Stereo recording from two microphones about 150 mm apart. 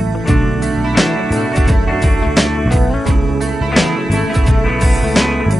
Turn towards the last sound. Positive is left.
turn(degrees=0)  # may be behind; listen again after turning